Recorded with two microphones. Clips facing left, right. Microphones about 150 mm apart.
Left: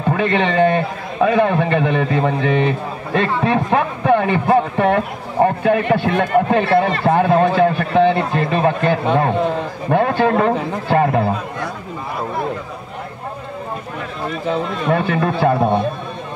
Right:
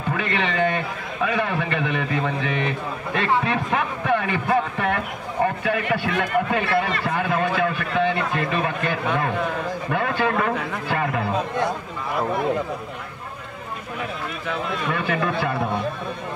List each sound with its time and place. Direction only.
0.1 s a man's voice: 30° left (ahead or behind)
14.4 s a man's voice: 30° left (ahead or behind)